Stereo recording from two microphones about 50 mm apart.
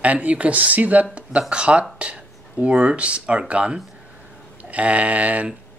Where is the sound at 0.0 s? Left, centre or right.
Right.